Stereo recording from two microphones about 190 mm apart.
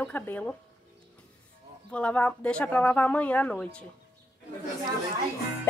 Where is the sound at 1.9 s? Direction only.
5° left (ahead or behind).